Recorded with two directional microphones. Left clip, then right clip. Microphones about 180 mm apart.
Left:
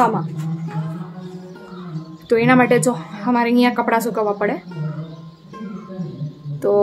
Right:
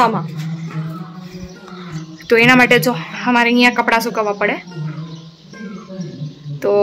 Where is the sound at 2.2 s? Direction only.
Centre (ahead or behind).